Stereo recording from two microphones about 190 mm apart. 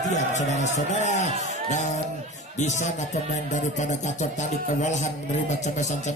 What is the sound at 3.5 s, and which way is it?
Speech, 40° left (ahead or behind).